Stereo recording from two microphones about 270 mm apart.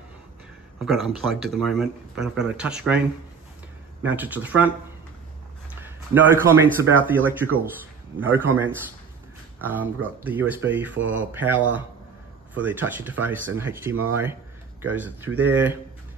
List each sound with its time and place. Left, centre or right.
0.7 s speech: centre
4.0 s speech: centre
5.8 s a man's voice: centre
11.0 s speech: right
11.3 s speech: centre